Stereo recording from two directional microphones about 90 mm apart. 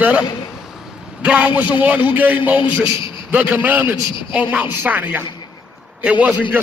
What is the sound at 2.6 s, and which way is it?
Speech, 70° left (ahead or behind).